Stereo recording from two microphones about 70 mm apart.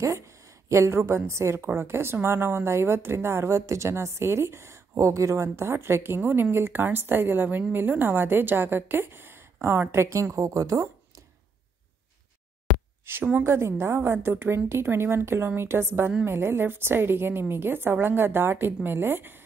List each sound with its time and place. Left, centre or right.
0.0 s a woman's voice: right
10.0 s a woman's voice: right
13.0 s a woman's voice: right